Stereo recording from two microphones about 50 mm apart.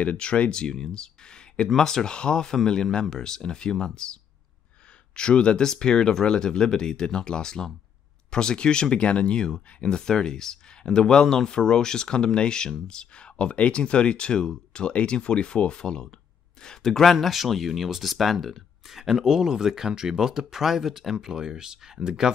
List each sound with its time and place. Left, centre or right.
0.0 s speech: left; by 22.3 s centre